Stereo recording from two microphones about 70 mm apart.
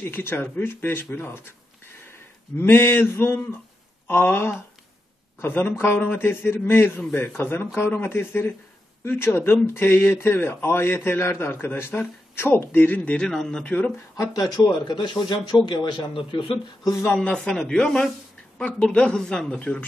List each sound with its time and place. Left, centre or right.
0.0 s speech: left
13.2 s speech: centre
13.7 s speech: left
14.1 s speech: left
17.1 s speech: centre
18.6 s speech: centre